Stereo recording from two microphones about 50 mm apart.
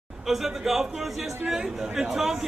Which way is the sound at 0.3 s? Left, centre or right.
Centre.